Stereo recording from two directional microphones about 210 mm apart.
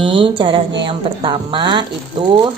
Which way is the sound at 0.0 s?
25° right (ahead or behind).